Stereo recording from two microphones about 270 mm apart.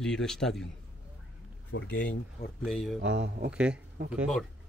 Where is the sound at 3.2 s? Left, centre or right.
Right.